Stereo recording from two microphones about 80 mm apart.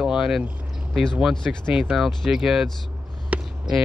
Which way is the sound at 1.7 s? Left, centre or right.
Centre.